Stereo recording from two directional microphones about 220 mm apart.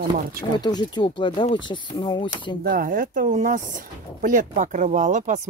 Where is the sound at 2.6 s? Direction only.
40° right (ahead or behind).